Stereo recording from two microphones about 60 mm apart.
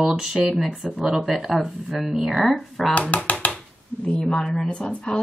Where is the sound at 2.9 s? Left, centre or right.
Left.